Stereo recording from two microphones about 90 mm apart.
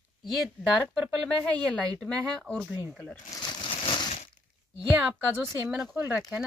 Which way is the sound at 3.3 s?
50° left (ahead or behind).